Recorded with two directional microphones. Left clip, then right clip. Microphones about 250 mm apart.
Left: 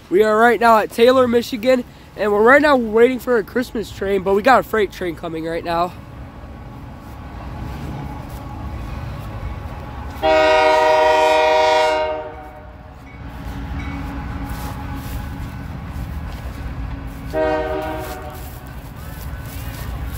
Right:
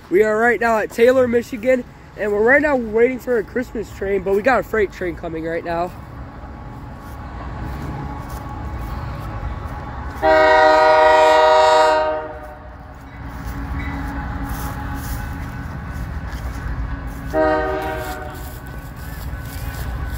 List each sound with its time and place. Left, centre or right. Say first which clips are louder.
0.1 s speech: left 2 dB; centre
4.4 s speech: left 5 dB; centre
4.7 s speech: even; left
10.2 s train: right 1 dB; left; by 12.2 s centre
17.3 s train: right 2 dB; centre